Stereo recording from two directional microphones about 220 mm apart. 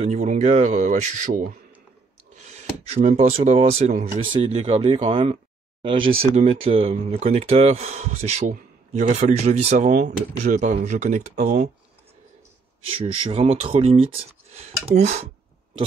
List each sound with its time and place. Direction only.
0.0 s speech: 30° right (ahead or behind)
12.9 s speech: 25° right (ahead or behind)